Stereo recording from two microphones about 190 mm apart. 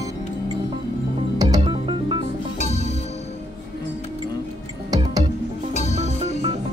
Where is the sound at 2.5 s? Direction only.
35° left (ahead or behind).